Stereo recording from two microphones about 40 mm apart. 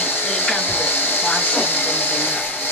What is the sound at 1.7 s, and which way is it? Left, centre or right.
Speech, left.